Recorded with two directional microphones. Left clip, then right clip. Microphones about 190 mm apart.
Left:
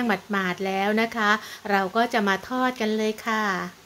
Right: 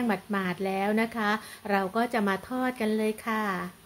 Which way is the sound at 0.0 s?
5° left (ahead or behind).